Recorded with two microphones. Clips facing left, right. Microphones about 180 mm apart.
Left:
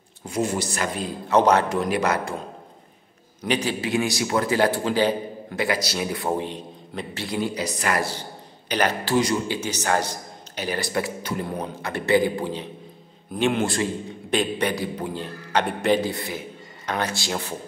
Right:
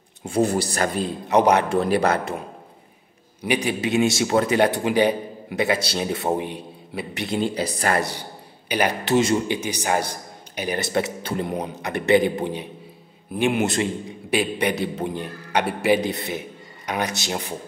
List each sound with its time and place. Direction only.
0.2 s speech: 30° right (ahead or behind)
1.3 s a man's voice: 15° right (ahead or behind)
1.7 s a man's voice: 30° right (ahead or behind)
3.4 s a man's voice: 15° right (ahead or behind)
7.2 s a man's voice: 25° right (ahead or behind)
8.0 s a man's voice: 15° right (ahead or behind)